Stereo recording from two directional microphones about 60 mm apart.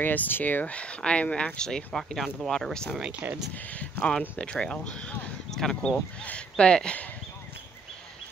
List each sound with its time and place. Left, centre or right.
0.0 s speech: left
0.7 s speech: centre
3.2 s speech: right
3.5 s speech: left